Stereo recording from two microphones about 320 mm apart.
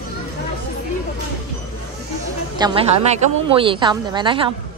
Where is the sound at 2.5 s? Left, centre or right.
Centre.